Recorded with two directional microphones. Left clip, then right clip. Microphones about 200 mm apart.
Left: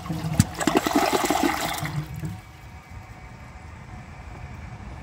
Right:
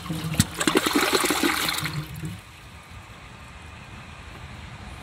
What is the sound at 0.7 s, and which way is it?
Toilet flush, 25° left (ahead or behind).